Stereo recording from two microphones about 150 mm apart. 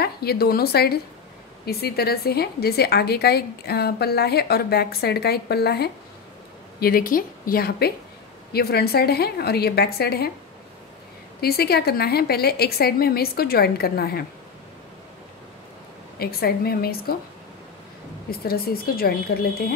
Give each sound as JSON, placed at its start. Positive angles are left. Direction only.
{"t": 0.0, "sound": "a woman's voice", "side_deg": 90}
{"t": 6.8, "sound": "a woman's voice", "side_deg": 75}
{"t": 11.4, "sound": "a woman's voice", "side_deg": 90}
{"t": 16.2, "sound": "a woman's voice", "side_deg": 90}
{"t": 18.3, "sound": "a woman's voice", "side_deg": 90}